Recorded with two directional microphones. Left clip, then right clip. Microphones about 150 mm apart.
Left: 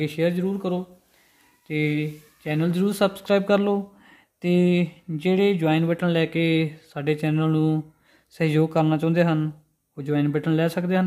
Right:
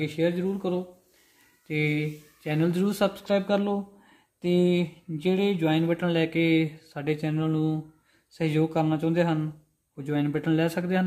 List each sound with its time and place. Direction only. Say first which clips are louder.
0.0 s speech: left 3 dB; 30° left (ahead or behind)
1.7 s speech: left 2 dB; 10° left (ahead or behind)
3.2 s speech: left 5 dB; 40° left (ahead or behind); by 11.1 s 25° left (ahead or behind)